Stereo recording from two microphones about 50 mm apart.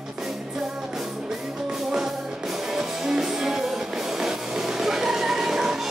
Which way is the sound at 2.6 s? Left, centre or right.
Centre.